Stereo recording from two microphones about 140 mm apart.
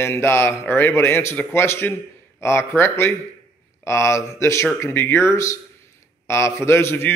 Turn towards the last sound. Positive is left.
turn(degrees=15)  # may be behind; listen again after turning